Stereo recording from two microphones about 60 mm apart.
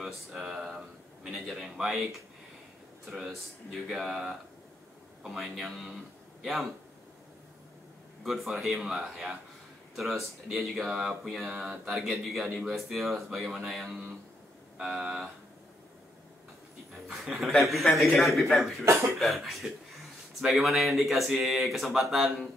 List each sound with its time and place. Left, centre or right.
0.0 s speech: centre
8.2 s speech: centre
14.8 s speech: centre
16.9 s speech: centre
18.9 s speech: right
19.1 s speech: centre